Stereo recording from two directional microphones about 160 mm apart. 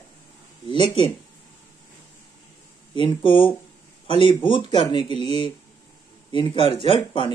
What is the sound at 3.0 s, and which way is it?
Speech, 30° left (ahead or behind).